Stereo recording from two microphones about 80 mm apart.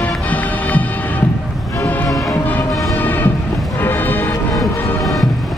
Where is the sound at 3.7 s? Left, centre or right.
Left.